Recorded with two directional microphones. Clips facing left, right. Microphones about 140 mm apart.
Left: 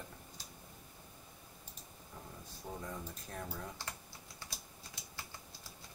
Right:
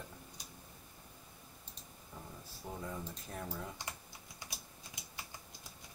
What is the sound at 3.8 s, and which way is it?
Speech, 15° right (ahead or behind).